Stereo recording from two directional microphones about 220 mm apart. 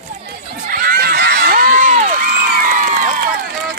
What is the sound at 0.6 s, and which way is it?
Crowd, 40° right (ahead or behind).